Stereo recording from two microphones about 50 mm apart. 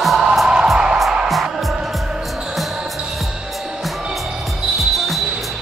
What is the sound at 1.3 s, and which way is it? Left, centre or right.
Music, centre.